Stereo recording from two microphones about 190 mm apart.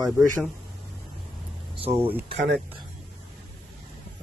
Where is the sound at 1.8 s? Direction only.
30° right (ahead or behind).